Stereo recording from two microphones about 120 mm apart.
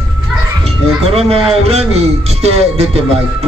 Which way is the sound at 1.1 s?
55° right (ahead or behind).